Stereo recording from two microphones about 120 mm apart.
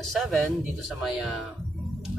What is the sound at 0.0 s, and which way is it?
Speech, centre (ahead or behind).